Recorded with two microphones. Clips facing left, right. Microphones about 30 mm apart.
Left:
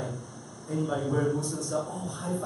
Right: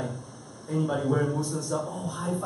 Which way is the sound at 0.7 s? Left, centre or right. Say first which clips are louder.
Right 2 dB; centre.